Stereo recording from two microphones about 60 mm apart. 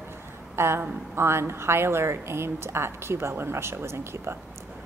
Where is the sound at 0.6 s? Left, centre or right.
Right.